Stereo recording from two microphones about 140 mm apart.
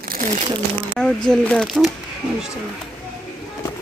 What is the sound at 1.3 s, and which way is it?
Speech, 5° left (ahead or behind).